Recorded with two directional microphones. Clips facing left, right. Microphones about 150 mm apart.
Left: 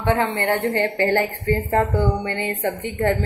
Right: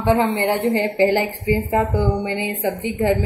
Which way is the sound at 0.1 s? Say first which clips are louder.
Right 3 dB; 15° right (ahead or behind).